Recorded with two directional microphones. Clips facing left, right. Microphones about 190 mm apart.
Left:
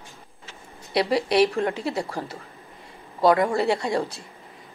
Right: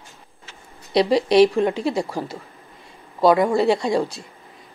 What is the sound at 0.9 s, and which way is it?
Speech, 15° right (ahead or behind).